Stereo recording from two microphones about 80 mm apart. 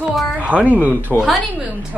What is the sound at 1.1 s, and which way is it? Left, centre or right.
Speech, centre.